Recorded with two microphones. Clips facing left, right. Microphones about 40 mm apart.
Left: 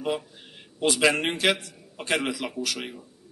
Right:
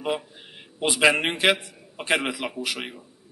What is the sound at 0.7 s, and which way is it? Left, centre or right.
A man's voice, centre.